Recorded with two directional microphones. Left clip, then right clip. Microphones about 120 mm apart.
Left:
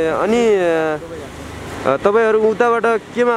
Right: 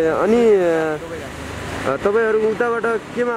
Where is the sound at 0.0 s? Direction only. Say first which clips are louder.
Even; 35° left (ahead or behind).